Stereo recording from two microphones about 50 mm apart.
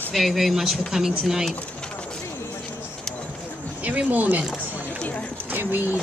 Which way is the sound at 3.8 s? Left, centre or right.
Right.